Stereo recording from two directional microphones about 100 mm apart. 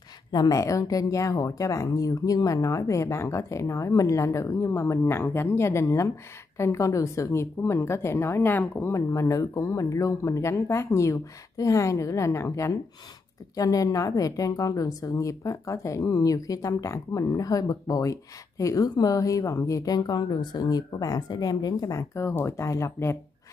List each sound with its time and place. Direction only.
0.3 s a woman's voice: 40° left (ahead or behind)